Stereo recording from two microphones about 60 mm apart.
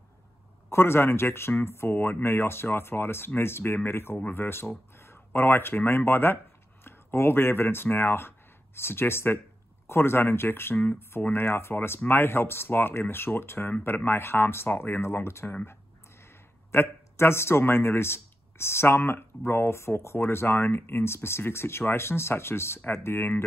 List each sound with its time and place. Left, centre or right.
0.7 s speech: left